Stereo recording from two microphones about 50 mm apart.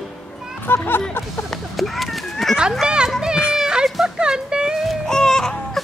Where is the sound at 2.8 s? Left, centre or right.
Centre.